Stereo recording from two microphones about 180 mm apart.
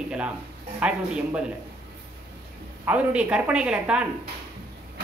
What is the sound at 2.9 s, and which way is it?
Speech, 5° right (ahead or behind).